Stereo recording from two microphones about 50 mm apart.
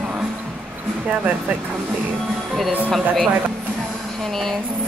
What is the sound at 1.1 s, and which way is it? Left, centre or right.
Speech, right.